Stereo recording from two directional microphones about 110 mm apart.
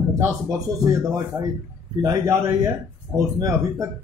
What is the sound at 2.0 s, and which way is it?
Speech, 35° right (ahead or behind).